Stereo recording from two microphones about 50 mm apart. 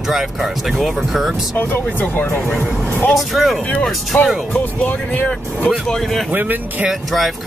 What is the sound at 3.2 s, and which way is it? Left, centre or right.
Speech, centre.